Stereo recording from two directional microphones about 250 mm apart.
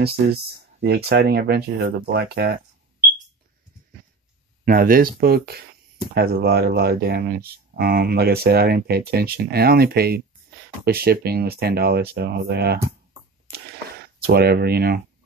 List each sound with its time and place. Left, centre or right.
0.0 s speech: right
4.6 s speech: right
13.5 s a sound: right